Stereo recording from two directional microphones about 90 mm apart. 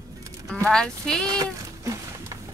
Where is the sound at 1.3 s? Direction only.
40° right (ahead or behind).